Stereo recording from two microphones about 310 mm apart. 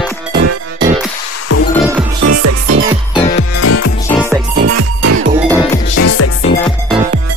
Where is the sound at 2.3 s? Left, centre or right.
Right.